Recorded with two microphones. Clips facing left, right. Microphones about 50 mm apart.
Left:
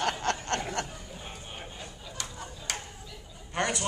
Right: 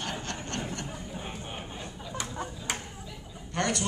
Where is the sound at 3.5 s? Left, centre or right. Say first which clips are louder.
Even; centre.